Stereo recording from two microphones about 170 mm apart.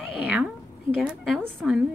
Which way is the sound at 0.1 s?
10° right (ahead or behind).